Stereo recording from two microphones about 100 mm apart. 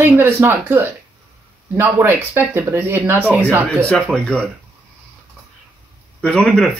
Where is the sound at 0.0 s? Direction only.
20° right (ahead or behind).